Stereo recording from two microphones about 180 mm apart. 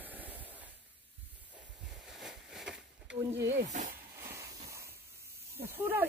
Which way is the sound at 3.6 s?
40° right (ahead or behind).